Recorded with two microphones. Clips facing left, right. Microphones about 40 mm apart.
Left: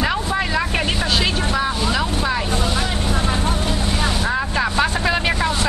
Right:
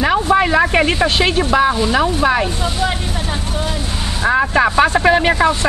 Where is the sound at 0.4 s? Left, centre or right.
Right.